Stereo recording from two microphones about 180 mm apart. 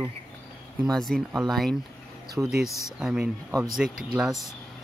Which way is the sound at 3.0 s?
5° right (ahead or behind).